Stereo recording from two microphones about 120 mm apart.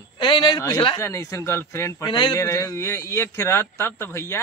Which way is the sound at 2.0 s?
35° left (ahead or behind).